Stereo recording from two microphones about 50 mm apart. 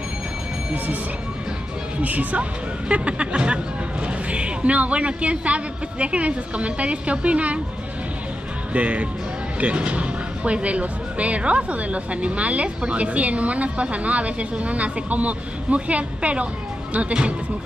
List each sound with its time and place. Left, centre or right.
2.0 s speech: right
8.7 s speech: right